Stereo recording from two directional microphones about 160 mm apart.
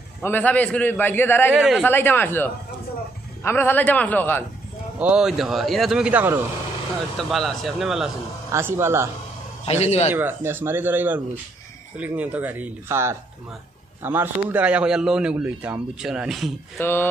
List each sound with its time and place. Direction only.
0.2 s a man's voice: 10° left (ahead or behind)
1.6 s speech: centre (ahead or behind)
1.9 s a man's voice: 15° left (ahead or behind)
5.0 s speech: 5° right (ahead or behind)
7.2 s speech: centre (ahead or behind)
8.5 s speech: 15° right (ahead or behind)
9.7 s a man's voice: 40° left (ahead or behind)
10.1 s speech: 15° right (ahead or behind)
16.7 s a man's voice: 15° left (ahead or behind)